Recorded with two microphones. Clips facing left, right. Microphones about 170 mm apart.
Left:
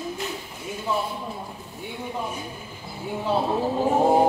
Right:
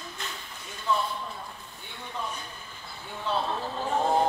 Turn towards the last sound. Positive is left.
turn(degrees=10)  # may be behind; listen again after turning